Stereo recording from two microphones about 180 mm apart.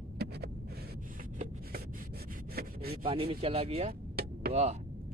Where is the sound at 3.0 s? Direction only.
30° right (ahead or behind).